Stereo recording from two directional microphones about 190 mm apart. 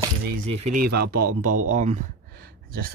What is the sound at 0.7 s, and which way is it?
Speech, 50° right (ahead or behind).